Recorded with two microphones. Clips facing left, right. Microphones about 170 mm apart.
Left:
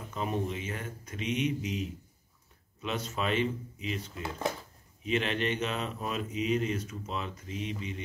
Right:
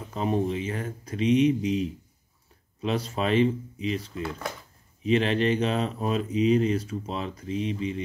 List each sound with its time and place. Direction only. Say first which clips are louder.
0.1 s speech: right 7 dB; 35° right (ahead or behind)